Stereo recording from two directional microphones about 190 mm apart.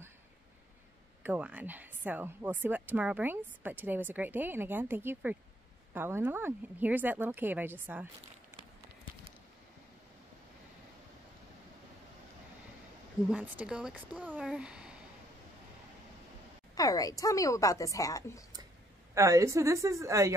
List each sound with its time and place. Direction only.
1.2 s speech: 10° right (ahead or behind)
13.3 s speech: 5° right (ahead or behind)
16.7 s a woman's voice: 20° left (ahead or behind)
19.1 s speech: 15° right (ahead or behind)